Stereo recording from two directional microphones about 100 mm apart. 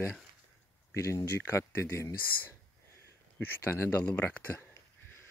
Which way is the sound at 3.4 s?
20° left (ahead or behind).